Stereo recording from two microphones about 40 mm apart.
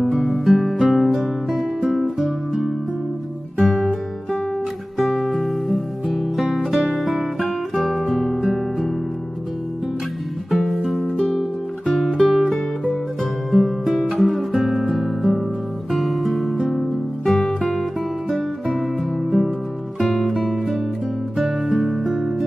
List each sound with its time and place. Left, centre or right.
0.2 s music: centre
4.9 s music: centre
10.5 s music: centre
19.3 s music: centre
22.0 s music: centre